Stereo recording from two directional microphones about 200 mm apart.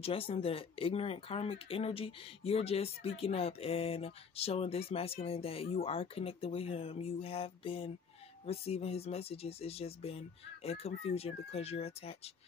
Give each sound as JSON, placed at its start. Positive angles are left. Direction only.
{"t": 0.0, "sound": "speech", "side_deg": 30}